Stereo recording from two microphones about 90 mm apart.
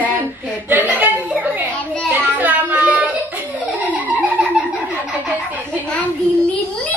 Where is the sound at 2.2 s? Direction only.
20° right (ahead or behind).